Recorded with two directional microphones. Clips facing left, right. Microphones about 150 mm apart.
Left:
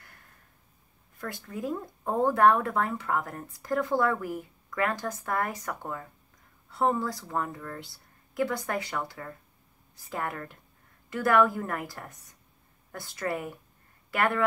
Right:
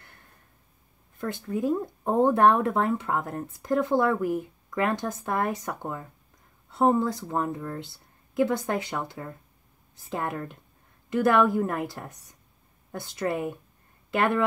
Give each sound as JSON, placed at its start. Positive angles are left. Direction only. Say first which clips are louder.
{"t": 1.1, "sound": "speech", "louder": "right 7 dB", "side_deg": -25}